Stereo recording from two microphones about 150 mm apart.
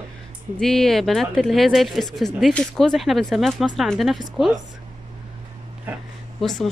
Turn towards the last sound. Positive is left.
turn(degrees=0)  # may be behind; listen again after turning